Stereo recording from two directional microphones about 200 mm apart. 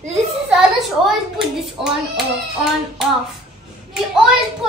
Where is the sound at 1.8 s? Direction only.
Centre (ahead or behind).